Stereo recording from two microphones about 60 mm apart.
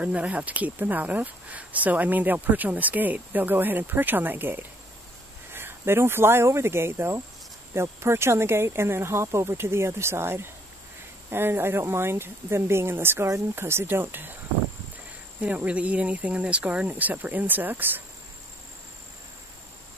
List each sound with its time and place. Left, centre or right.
0.0 s speech: right
15.4 s speech: right